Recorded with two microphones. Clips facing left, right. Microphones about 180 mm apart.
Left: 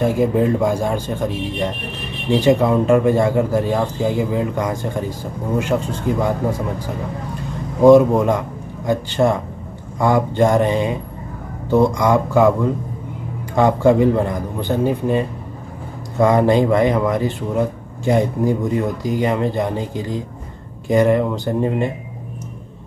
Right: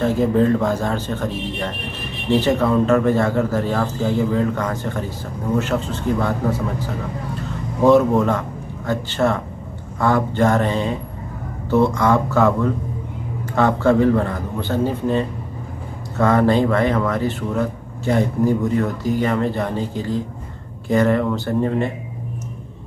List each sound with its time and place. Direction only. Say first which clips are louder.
0.0 s speech: even; 10° left (ahead or behind)
7.8 s a man's voice: left 4 dB; 15° left (ahead or behind)